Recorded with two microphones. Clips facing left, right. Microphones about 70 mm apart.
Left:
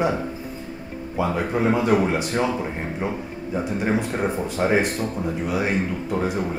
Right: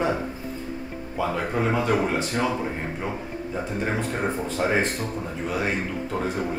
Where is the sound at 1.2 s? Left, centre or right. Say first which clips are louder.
Left 3 dB; centre.